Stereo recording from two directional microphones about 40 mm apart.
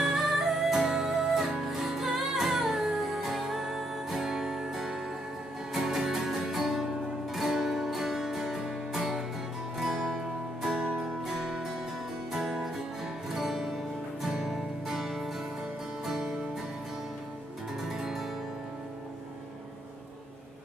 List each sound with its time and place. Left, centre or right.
0.0 s music: centre
10.8 s music: right
11.2 s music: centre
17.8 s music: centre